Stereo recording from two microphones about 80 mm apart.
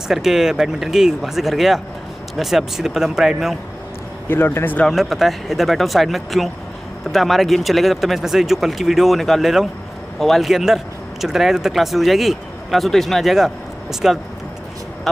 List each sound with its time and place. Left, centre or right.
0.1 s speech: centre
4.3 s speech: left
4.8 s speech: centre